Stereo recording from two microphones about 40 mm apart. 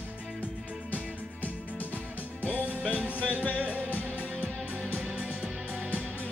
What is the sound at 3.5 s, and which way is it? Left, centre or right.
Music, right.